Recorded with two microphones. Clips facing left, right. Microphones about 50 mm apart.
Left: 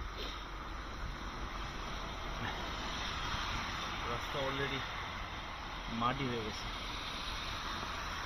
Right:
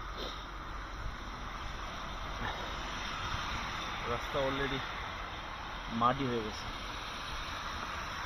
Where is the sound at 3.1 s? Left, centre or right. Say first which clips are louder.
Right 2 dB; right.